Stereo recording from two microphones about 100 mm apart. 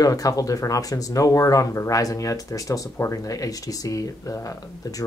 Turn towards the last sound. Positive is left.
turn(degrees=35)  # may be behind; listen again after turning